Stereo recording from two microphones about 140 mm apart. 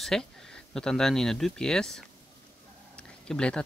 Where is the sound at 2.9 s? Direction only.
5° left (ahead or behind).